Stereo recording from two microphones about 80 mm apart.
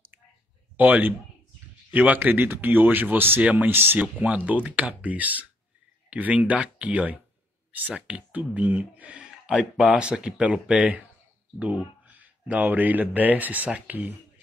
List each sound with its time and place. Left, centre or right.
0.7 s speech: right